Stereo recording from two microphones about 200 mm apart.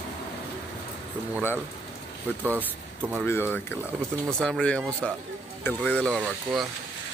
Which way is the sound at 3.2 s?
10° left (ahead or behind).